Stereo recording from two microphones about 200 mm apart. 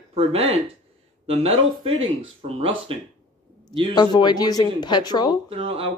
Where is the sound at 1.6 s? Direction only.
90° right.